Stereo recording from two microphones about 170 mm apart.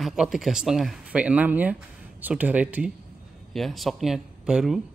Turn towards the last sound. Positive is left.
turn(degrees=-5)  # may be behind; listen again after turning